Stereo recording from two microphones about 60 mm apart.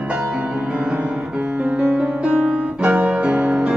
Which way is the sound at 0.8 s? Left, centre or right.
Right.